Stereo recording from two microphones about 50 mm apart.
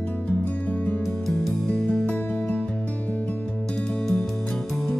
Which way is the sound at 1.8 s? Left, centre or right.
Left.